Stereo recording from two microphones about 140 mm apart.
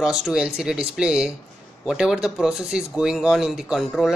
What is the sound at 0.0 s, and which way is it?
Speech, 5° right (ahead or behind).